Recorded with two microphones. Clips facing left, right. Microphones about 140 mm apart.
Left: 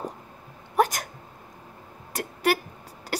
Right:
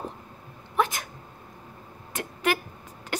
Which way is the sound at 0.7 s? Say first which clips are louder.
Left 3 dB; 40° left (ahead or behind).